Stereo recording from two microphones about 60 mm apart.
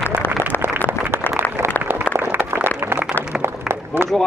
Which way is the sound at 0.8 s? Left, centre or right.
Right.